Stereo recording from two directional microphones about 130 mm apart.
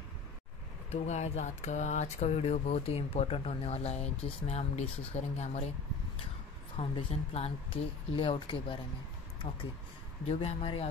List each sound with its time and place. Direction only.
0.8 s speech: 60° left (ahead or behind)
6.8 s speech: 50° left (ahead or behind)
10.4 s speech: 50° left (ahead or behind)